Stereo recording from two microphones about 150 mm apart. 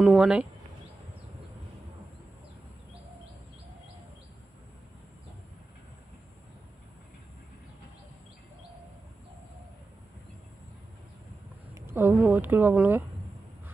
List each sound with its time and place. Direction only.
0.0 s speech: 5° right (ahead or behind)
11.7 s speech: 15° right (ahead or behind)